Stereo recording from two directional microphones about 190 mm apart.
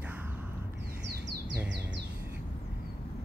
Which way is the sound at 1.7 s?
65° right (ahead or behind).